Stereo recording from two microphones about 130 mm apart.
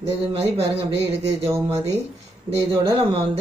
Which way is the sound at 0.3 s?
50° right (ahead or behind).